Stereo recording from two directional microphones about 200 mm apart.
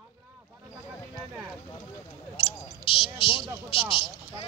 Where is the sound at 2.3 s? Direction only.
30° left (ahead or behind).